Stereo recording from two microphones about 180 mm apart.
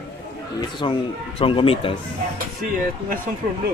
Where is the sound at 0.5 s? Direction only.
25° left (ahead or behind).